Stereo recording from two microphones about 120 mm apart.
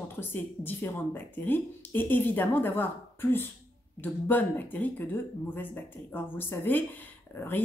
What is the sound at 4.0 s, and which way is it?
Speech, 15° left (ahead or behind).